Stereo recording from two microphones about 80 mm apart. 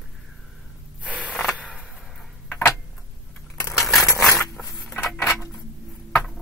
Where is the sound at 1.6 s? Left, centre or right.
Centre.